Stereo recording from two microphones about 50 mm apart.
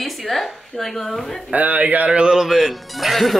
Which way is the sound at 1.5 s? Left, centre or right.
Right.